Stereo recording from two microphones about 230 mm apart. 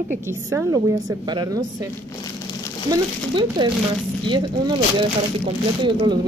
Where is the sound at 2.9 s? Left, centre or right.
Centre.